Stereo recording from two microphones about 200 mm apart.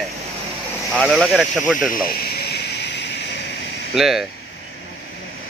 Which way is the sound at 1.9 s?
50° left (ahead or behind).